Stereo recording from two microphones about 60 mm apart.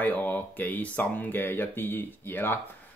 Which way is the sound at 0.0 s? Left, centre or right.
Left.